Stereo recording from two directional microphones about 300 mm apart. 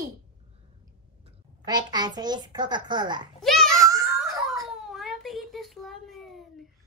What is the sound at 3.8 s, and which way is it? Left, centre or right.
Giggle, centre.